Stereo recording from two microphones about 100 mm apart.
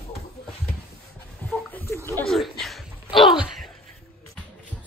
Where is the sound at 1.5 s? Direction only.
20° left (ahead or behind).